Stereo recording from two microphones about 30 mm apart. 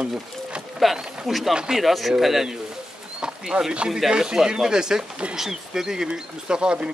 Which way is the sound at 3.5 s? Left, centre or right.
Right.